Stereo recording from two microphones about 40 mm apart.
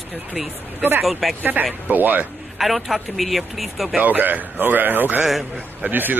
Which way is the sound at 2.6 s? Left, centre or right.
Centre.